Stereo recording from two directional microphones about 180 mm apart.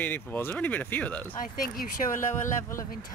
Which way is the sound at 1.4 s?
50° left (ahead or behind).